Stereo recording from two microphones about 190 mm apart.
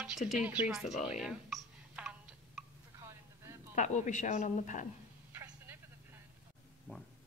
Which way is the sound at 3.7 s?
40° left (ahead or behind).